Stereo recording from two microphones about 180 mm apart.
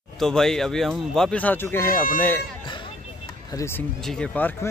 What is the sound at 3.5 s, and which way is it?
Speech, 15° left (ahead or behind).